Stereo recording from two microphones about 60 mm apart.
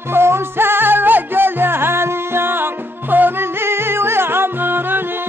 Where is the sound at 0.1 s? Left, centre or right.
Right.